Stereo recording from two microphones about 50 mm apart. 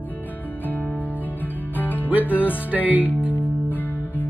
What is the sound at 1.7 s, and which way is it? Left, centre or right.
Music, left.